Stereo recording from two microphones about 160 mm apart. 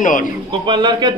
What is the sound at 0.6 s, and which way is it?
Speech, 30° right (ahead or behind).